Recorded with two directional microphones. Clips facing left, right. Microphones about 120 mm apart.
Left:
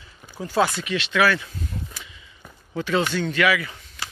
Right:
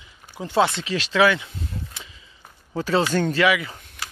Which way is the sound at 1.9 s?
35° right (ahead or behind).